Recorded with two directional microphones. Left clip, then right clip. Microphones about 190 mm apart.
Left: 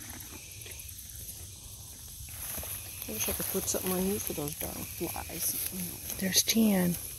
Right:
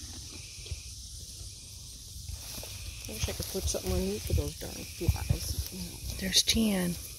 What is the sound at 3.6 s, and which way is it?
Speech, 55° left (ahead or behind).